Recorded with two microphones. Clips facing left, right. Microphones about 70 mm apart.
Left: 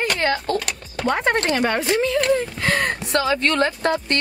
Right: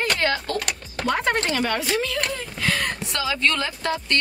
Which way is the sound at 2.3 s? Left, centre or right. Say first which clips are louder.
Left 7 dB; left.